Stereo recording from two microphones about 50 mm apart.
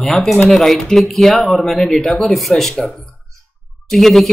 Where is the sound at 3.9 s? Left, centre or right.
Centre.